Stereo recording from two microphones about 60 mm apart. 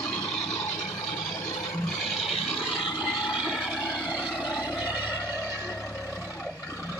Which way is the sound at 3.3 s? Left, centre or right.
Centre.